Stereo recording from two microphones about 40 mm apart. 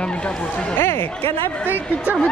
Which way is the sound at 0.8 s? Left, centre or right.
Left.